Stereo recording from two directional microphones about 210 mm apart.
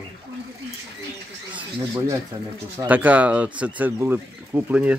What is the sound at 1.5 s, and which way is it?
Speech, 15° right (ahead or behind).